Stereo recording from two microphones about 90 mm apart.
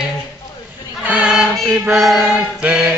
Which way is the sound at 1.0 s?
10° right (ahead or behind).